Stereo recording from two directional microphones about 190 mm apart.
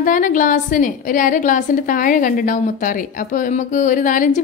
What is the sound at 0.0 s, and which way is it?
A woman's voice, 45° left (ahead or behind).